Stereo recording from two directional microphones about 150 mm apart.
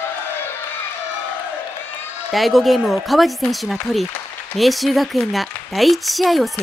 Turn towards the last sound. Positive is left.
turn(degrees=0)  # may be behind; listen again after turning